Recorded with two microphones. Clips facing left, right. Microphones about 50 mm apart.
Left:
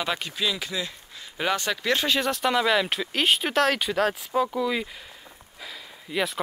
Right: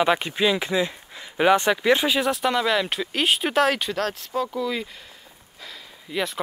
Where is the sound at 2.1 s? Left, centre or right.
Centre.